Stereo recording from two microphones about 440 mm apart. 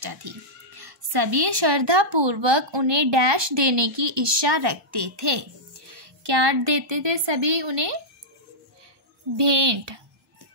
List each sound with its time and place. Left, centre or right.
0.0 s a woman's voice: right
9.4 s speech: right